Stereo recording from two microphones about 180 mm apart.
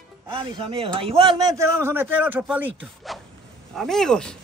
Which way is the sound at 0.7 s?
30° right (ahead or behind).